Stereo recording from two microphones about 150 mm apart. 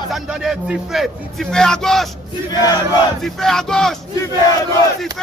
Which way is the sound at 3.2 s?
5° left (ahead or behind).